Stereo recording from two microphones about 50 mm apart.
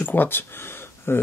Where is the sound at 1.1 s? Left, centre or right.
Left.